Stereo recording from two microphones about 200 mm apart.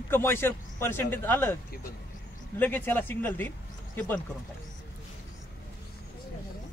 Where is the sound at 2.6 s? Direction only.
10° left (ahead or behind).